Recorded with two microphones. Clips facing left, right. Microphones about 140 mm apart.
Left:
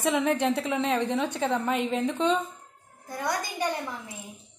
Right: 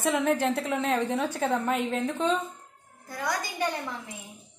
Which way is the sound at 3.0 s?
20° left (ahead or behind).